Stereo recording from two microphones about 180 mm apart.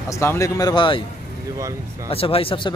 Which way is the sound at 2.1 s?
30° left (ahead or behind).